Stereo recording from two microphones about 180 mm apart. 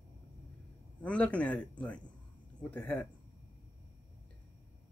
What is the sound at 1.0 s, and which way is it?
Speech, 5° left (ahead or behind).